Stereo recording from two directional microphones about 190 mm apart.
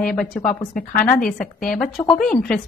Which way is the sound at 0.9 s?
45° left (ahead or behind).